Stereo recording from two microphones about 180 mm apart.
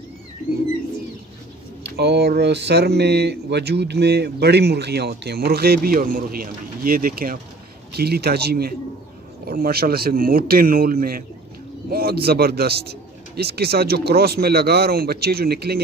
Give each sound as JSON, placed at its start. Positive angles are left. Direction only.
{"t": 1.8, "sound": "speech", "side_deg": -65}